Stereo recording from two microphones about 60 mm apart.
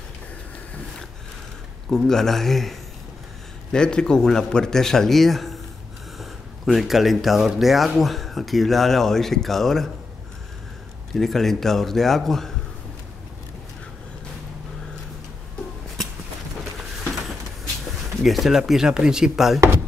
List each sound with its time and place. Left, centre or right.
1.9 s a man's voice: centre
11.1 s speech: centre
17.1 s a sound: centre
17.8 s speech: centre